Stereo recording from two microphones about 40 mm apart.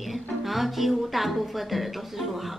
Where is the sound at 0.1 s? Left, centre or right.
Centre.